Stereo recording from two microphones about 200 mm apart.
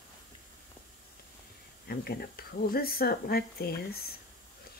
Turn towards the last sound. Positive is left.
turn(degrees=50)  # may be behind; listen again after turning